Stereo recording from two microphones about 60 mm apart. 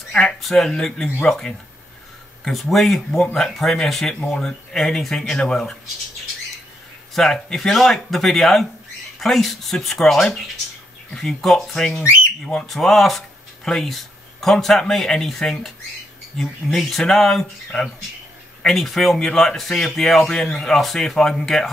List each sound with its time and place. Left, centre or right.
0.1 s speech: centre
7.2 s speech: centre
12.7 s speech: centre